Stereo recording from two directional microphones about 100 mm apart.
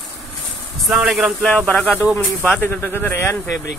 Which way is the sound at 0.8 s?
5° right (ahead or behind).